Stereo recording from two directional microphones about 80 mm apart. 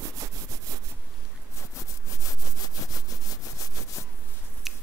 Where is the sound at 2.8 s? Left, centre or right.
Left.